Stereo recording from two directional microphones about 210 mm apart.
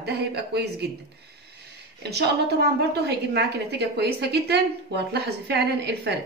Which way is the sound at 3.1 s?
50° right (ahead or behind).